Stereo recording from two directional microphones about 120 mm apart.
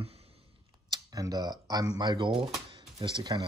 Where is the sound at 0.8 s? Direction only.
30° right (ahead or behind).